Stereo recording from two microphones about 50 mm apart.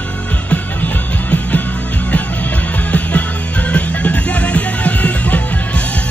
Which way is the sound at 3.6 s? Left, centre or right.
Left.